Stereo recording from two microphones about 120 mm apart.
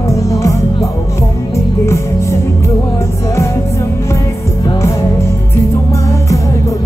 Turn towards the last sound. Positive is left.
turn(degrees=25)  # may be behind; listen again after turning